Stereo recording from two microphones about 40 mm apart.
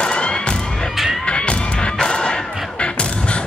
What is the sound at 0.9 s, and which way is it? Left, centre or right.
Music, centre.